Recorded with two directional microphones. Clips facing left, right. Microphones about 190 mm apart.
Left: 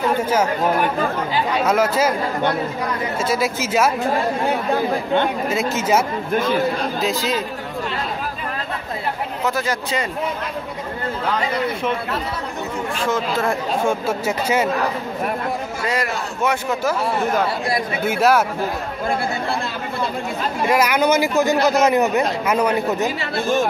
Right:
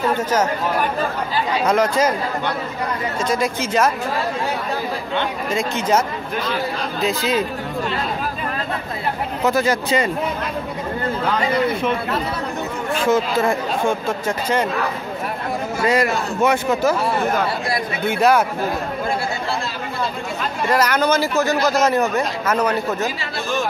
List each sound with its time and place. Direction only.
0.2 s a man's voice: 10° left (ahead or behind)
1.7 s a man's voice: 5° left (ahead or behind)
3.3 s a man's voice: 5° left (ahead or behind)
5.5 s a man's voice: 5° left (ahead or behind)
9.5 s a man's voice: centre (ahead or behind)
13.1 s a man's voice: centre (ahead or behind)
15.8 s a man's voice: centre (ahead or behind)
18.0 s a man's voice: 5° left (ahead or behind)
20.6 s a man's voice: 10° left (ahead or behind)